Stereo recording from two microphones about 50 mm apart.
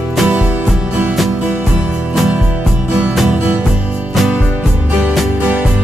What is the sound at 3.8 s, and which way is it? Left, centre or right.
Music, right.